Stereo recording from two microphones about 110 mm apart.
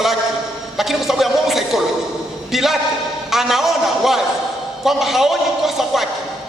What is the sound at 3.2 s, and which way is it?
A man's voice, 5° right (ahead or behind).